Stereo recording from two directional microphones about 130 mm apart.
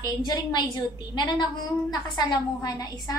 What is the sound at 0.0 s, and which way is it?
A woman's voice, 30° left (ahead or behind).